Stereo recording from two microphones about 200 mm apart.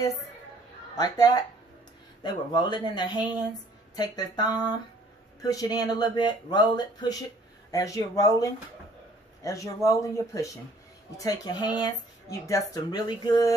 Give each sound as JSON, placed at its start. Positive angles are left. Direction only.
{"t": 0.9, "sound": "speech", "side_deg": 20}